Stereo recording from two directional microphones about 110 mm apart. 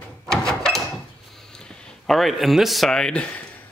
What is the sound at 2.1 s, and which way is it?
Speech, centre (ahead or behind).